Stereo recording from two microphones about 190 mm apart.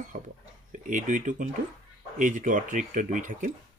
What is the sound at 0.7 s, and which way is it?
Speech, 40° right (ahead or behind).